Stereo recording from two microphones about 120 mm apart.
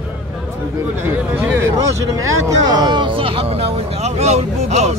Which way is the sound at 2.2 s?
35° right (ahead or behind).